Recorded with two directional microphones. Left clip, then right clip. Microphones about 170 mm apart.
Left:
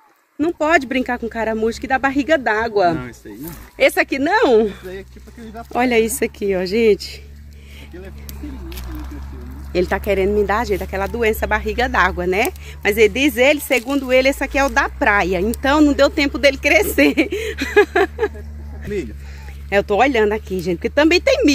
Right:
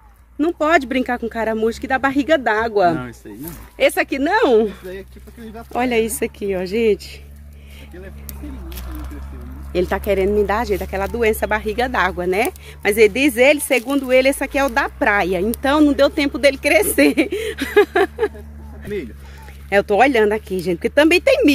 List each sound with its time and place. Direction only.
0.4 s speech: 5° right (ahead or behind)
3.7 s speech: 30° left (ahead or behind)
5.7 s speech: 30° left (ahead or behind)
9.8 s speech: centre (ahead or behind)
19.7 s speech: 10° right (ahead or behind)